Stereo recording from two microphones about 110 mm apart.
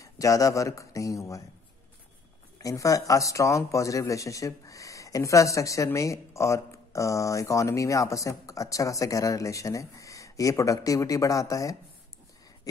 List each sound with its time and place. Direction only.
0.0 s speech: 30° left (ahead or behind)
2.6 s speech: 30° left (ahead or behind)